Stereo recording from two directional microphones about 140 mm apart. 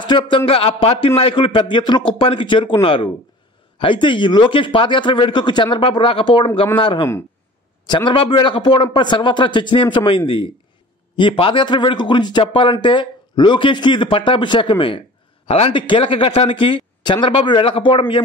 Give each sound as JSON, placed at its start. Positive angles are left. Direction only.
{"t": 0.0, "sound": "a man's voice", "side_deg": 35}